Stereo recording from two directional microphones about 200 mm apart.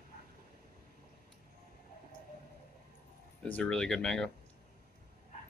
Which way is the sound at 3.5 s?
5° left (ahead or behind).